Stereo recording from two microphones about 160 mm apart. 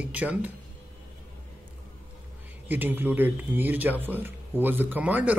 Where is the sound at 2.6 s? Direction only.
10° right (ahead or behind).